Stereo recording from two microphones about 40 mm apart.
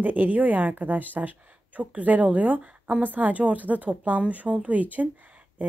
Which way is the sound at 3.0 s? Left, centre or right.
Right.